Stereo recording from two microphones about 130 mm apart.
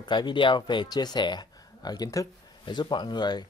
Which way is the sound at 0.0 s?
35° left (ahead or behind).